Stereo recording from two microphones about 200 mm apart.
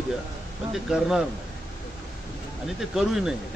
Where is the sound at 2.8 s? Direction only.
Centre (ahead or behind).